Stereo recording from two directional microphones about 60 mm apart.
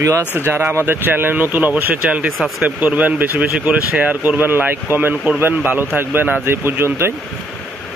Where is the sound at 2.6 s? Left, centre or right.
Right.